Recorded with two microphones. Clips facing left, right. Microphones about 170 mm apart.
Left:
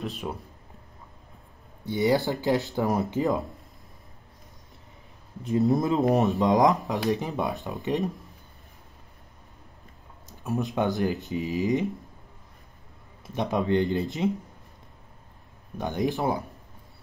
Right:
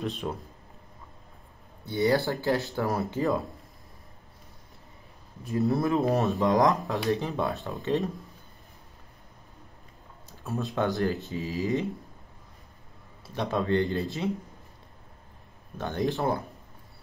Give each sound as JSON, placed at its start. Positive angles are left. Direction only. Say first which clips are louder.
{"t": 0.0, "sound": "speech", "louder": "right 1 dB", "side_deg": 5}
{"t": 1.9, "sound": "speech", "louder": "left 1 dB", "side_deg": 15}
{"t": 5.7, "sound": "speech", "louder": "left 1 dB", "side_deg": 20}
{"t": 10.2, "sound": "speech", "louder": "left 4 dB", "side_deg": 15}
{"t": 13.3, "sound": "speech", "louder": "left 2 dB", "side_deg": 20}
{"t": 15.8, "sound": "speech", "louder": "left 1 dB", "side_deg": 15}